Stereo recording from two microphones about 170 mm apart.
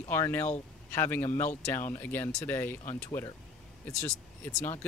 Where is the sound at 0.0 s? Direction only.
15° left (ahead or behind).